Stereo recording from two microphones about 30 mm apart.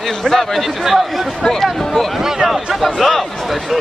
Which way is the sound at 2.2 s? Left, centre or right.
Centre.